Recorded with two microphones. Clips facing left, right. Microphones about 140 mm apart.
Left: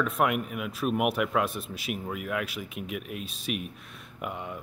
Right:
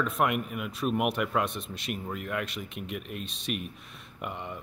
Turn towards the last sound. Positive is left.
turn(degrees=0)  # may be behind; listen again after turning